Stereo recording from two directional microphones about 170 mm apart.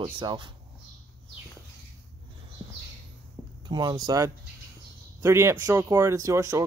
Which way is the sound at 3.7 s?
25° right (ahead or behind).